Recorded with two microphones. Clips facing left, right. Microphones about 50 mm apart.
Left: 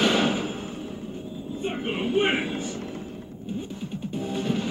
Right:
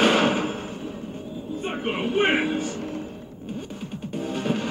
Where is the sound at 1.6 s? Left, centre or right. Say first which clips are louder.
Right 1 dB; centre.